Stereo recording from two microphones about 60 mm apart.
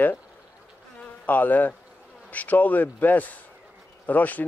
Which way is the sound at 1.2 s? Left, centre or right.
Left.